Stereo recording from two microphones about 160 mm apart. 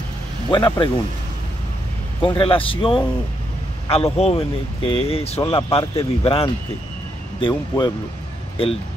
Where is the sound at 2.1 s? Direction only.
30° left (ahead or behind).